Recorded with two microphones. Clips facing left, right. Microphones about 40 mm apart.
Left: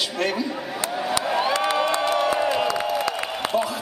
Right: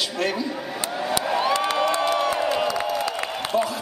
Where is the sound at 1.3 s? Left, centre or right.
Centre.